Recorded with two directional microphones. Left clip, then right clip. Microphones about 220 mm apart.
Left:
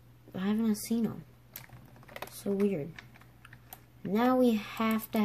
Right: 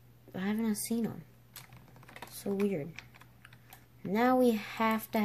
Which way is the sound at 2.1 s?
40° left (ahead or behind).